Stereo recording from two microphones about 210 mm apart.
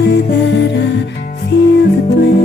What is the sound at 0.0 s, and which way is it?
Music, 55° left (ahead or behind).